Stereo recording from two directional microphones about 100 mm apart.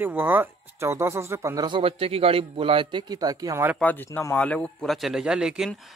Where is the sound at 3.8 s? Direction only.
15° left (ahead or behind).